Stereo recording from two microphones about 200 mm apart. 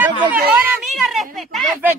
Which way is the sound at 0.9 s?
Centre (ahead or behind).